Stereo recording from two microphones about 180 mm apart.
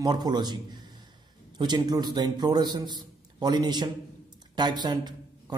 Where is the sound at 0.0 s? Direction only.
20° right (ahead or behind).